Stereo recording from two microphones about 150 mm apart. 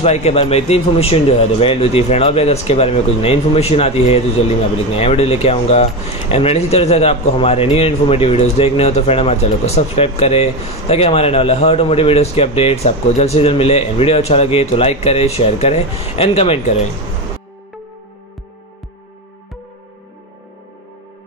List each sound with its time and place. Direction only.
0.0 s speech: 45° left (ahead or behind)